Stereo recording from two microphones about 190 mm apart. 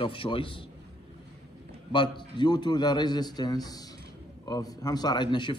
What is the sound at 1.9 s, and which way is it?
A man's voice, 25° left (ahead or behind).